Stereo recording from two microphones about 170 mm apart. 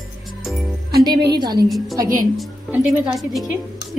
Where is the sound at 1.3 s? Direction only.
25° right (ahead or behind).